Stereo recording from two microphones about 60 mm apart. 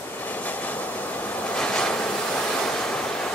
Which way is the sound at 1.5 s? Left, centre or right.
Centre.